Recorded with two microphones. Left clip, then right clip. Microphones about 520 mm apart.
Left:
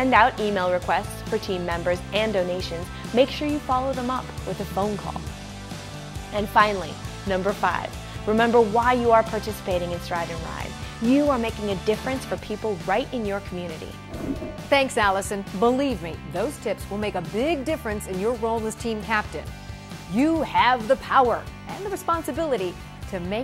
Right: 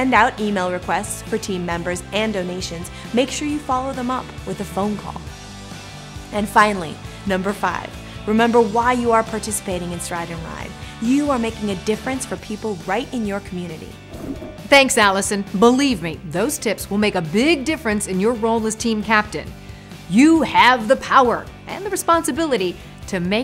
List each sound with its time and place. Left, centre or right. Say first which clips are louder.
0.0 s speech: right 2 dB; left
6.3 s speech: right 4 dB; left
14.7 s speech: right 7 dB; left